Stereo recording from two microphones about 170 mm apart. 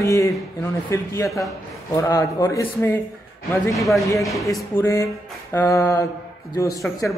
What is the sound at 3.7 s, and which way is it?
Speech, centre (ahead or behind).